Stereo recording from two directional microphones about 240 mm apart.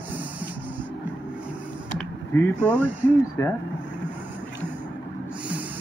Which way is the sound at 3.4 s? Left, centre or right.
Centre.